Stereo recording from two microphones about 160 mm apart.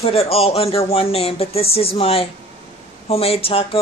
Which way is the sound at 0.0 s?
40° left (ahead or behind).